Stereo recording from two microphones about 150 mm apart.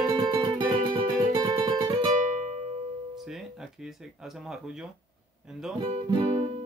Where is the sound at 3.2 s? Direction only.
Centre (ahead or behind).